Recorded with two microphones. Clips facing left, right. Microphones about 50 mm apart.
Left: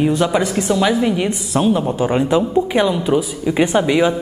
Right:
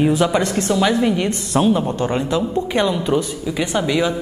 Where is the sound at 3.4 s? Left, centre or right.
Left.